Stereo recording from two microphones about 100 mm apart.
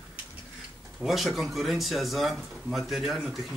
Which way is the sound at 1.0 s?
Centre (ahead or behind).